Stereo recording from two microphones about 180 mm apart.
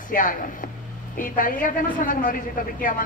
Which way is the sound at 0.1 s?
50° left (ahead or behind).